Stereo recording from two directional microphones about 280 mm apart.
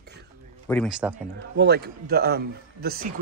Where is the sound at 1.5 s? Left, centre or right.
Right.